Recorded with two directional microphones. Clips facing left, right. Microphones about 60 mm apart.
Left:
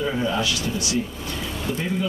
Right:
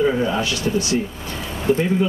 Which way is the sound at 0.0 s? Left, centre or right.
Right.